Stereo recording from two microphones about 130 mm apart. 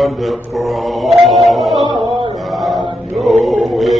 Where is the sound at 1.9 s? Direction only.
35° right (ahead or behind).